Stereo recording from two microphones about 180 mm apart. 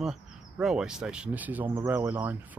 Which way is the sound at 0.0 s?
5° right (ahead or behind).